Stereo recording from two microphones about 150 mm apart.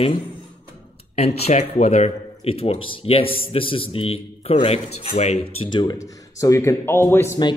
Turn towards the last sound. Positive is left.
turn(degrees=15)  # may be behind; listen again after turning